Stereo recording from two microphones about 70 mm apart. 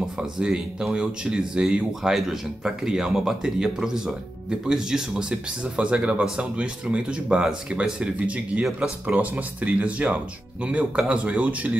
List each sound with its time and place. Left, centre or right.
0.2 s speech: centre